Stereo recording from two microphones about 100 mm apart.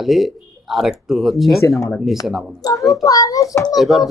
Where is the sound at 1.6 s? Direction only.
30° left (ahead or behind).